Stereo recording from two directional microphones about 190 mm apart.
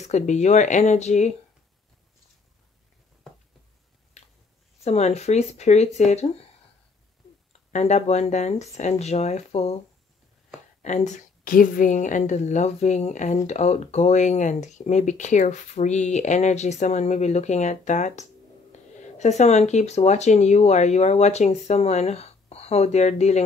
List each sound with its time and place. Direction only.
0.0 s speech: 35° left (ahead or behind)
4.2 s a sound: 35° left (ahead or behind)
4.8 s speech: 35° left (ahead or behind)
7.7 s speech: 35° left (ahead or behind)
10.8 s speech: 40° left (ahead or behind)